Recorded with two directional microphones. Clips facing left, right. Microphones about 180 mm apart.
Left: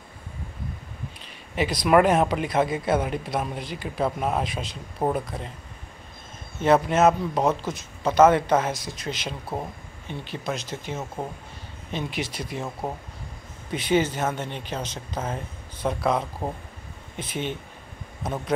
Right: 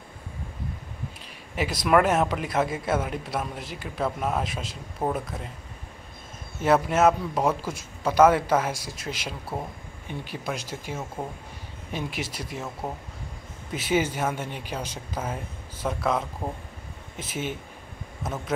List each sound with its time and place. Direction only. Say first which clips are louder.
1.5 s speech: left 2 dB; 5° right (ahead or behind)
4.0 s speech: left 2 dB; 10° left (ahead or behind)
4.4 s speech: left 2 dB; 5° right (ahead or behind)
6.6 s speech: left 2 dB; 5° right (ahead or behind)
9.5 s speech: left 2 dB; 25° left (ahead or behind)
10.0 s speech: left 2 dB; 10° right (ahead or behind)
13.7 s speech: left 2 dB; 5° right (ahead or behind)